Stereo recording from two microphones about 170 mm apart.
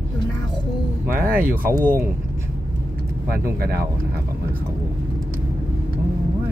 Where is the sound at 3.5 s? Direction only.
65° right (ahead or behind).